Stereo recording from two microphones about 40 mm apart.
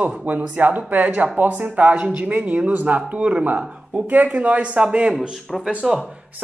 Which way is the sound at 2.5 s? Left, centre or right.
Right.